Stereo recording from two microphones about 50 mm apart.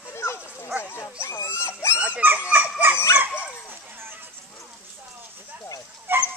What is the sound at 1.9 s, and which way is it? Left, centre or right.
Dog, right.